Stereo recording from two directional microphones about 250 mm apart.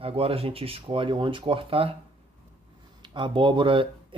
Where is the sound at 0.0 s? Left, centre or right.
Right.